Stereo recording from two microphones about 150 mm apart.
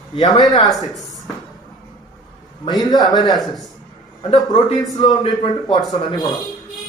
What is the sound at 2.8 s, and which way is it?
Speech, 25° left (ahead or behind).